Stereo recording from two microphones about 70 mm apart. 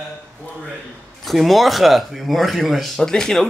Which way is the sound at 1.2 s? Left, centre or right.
Centre.